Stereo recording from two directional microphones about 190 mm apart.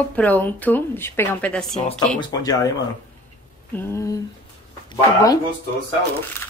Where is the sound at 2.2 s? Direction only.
20° left (ahead or behind).